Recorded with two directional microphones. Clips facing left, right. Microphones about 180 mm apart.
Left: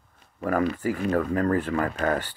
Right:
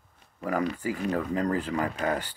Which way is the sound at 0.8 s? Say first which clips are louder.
Left 4 dB; 15° right (ahead or behind).